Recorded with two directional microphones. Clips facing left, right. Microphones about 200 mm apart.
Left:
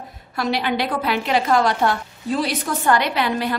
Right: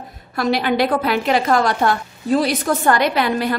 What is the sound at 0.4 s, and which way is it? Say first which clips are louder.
A woman's voice: right 4 dB; 45° right (ahead or behind).